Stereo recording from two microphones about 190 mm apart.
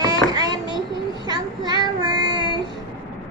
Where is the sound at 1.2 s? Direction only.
20° right (ahead or behind).